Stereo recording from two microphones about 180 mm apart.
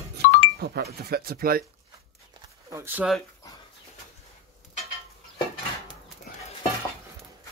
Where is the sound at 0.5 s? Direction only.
65° right (ahead or behind).